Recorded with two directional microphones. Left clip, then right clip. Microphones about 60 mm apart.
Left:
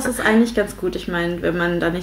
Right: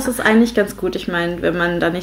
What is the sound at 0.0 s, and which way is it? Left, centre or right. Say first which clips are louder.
Speech: right 2 dB; centre.